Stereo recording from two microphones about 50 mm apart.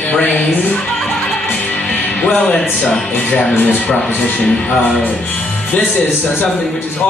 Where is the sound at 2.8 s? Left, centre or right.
Left.